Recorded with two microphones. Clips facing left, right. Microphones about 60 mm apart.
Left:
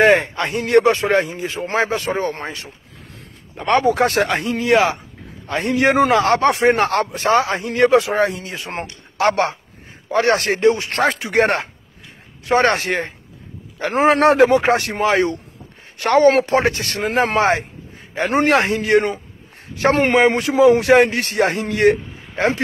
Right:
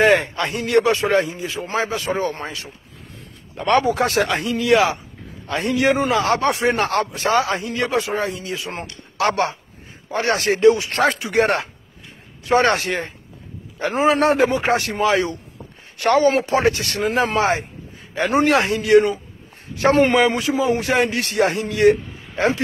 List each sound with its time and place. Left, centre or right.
0.1 s a man's voice: left
0.5 s a man's voice: left
2.1 s a man's voice: left
3.8 s a man's voice: left
20.1 s a man's voice: left
20.5 s a man's voice: left